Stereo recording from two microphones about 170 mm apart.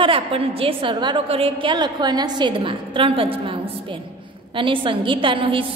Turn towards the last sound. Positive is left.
turn(degrees=-30)  # may be behind; listen again after turning